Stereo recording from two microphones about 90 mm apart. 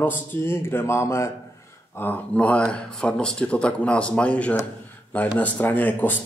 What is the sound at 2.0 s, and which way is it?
Speech, 20° left (ahead or behind).